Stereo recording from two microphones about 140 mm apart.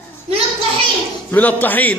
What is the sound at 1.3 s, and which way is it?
Speech, 10° left (ahead or behind).